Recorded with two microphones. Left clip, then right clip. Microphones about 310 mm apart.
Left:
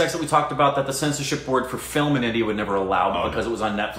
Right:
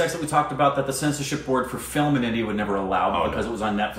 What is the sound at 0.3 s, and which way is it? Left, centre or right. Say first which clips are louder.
Speech: left 2 dB; centre.